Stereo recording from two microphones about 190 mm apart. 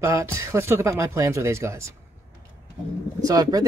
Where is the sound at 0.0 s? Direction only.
15° right (ahead or behind).